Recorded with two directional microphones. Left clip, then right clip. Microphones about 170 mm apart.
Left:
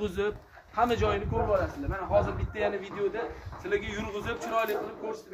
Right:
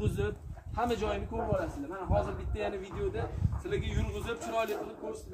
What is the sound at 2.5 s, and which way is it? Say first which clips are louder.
A man's voice: left 6 dB; 10° left (ahead or behind).